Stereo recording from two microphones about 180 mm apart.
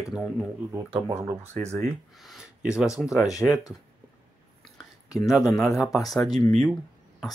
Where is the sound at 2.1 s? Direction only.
Centre (ahead or behind).